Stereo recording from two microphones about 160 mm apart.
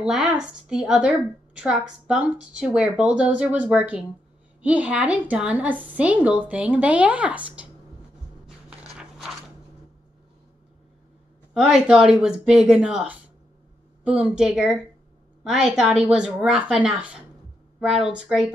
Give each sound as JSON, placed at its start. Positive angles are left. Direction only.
{"t": 0.0, "sound": "a woman's voice", "side_deg": -5}
{"t": 8.9, "sound": "a sound", "side_deg": -5}
{"t": 11.5, "sound": "a woman's voice", "side_deg": -5}